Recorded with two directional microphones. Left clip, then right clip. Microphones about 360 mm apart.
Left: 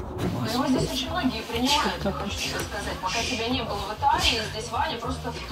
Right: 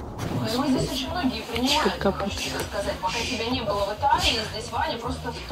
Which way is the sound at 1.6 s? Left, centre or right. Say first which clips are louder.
Right 1 dB; centre.